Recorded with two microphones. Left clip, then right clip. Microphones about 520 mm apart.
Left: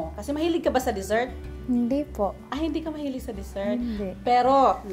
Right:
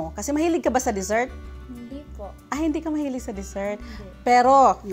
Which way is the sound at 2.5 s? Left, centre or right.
Right.